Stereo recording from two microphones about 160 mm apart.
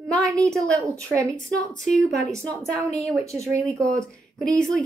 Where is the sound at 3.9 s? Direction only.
5° left (ahead or behind).